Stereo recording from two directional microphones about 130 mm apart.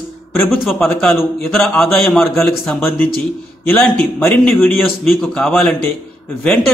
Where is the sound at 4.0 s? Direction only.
10° left (ahead or behind).